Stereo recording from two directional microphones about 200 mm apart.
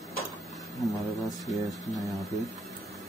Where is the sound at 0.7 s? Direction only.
Centre (ahead or behind).